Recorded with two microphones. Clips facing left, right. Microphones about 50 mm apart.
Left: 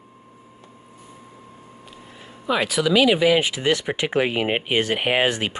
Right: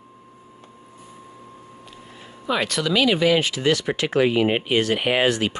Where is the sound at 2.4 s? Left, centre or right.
Centre.